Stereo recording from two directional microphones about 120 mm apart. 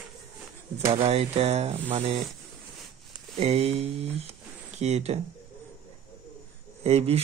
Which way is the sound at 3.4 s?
60° right (ahead or behind).